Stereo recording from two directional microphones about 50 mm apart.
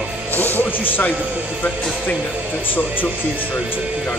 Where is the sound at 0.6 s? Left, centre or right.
Left.